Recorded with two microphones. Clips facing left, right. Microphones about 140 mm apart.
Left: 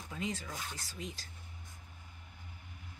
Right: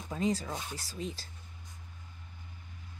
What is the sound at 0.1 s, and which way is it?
Speech, 35° right (ahead or behind).